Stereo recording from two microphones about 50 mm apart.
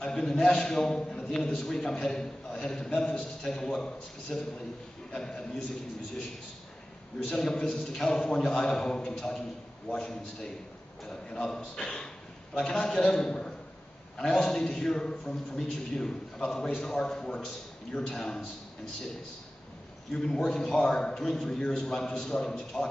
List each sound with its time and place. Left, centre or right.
0.0 s a man's voice: centre
7.3 s a man's voice: centre
20.1 s a man's voice: centre